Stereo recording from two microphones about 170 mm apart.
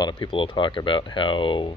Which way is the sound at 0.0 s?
30° left (ahead or behind).